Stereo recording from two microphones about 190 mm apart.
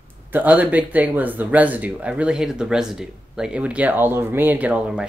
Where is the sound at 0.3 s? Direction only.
10° right (ahead or behind).